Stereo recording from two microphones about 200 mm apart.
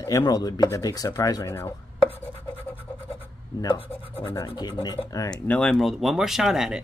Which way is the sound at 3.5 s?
25° left (ahead or behind).